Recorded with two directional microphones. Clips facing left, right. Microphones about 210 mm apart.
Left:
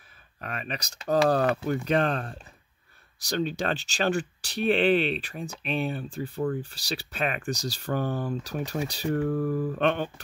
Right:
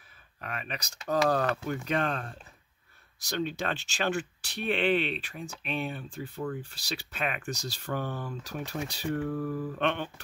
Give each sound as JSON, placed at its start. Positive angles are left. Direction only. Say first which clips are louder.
{"t": 0.4, "sound": "speech", "louder": "left 3 dB", "side_deg": 35}